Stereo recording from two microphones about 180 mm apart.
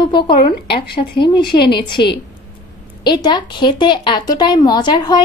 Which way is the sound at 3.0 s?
25° left (ahead or behind).